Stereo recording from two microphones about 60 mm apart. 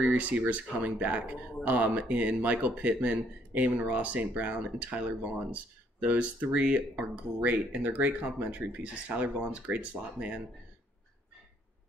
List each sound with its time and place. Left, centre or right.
0.0 s speech: right